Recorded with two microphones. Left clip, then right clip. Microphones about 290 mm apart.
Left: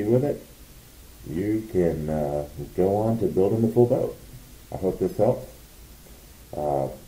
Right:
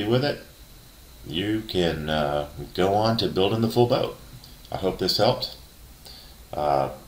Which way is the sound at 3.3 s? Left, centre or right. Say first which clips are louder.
Left 3 dB; right.